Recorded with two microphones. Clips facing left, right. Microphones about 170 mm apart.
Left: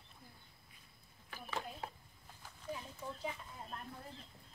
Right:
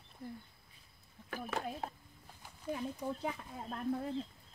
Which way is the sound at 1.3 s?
50° right (ahead or behind).